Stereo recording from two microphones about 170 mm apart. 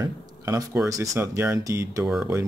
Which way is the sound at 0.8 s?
20° right (ahead or behind).